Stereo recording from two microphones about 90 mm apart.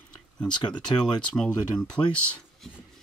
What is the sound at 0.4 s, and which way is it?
Speech, 50° left (ahead or behind).